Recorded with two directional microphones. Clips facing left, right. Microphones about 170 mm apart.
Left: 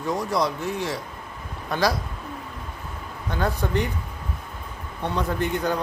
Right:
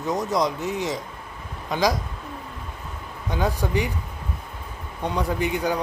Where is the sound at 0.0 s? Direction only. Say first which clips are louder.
Right 1 dB; 20° right (ahead or behind).